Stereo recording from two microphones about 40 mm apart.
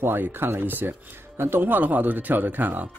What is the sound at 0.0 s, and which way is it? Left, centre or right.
Speech, right.